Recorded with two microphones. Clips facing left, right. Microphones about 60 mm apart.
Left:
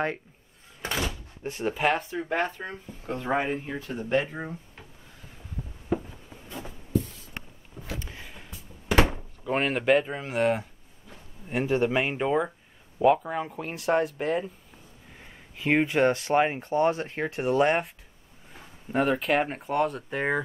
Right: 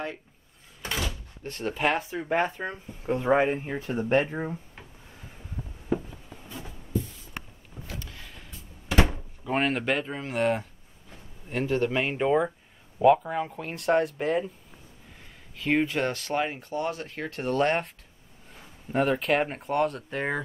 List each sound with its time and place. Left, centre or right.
0.8 s door: left
1.4 s speech: centre; by 3.9 s right
3.9 s speech: right
4.3 s speech: right
8.0 s a sound: centre
9.4 s speech: centre
11.4 s speech: centre
15.5 s speech: centre